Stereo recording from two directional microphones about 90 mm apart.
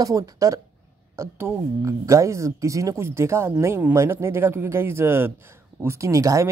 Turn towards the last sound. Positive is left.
turn(degrees=-35)  # may be behind; listen again after turning